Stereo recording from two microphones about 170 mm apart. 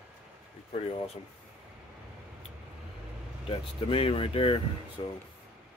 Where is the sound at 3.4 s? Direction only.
35° left (ahead or behind).